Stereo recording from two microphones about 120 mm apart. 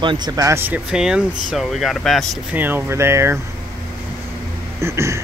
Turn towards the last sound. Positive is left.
turn(degrees=-25)  # may be behind; listen again after turning